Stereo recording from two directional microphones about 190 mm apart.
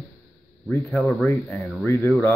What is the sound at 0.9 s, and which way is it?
Speech, 5° left (ahead or behind).